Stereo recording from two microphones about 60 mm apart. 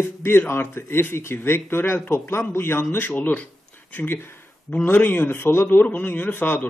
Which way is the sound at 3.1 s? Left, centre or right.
Left.